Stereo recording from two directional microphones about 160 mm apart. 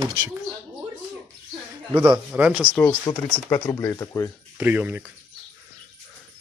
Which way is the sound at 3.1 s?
30° left (ahead or behind).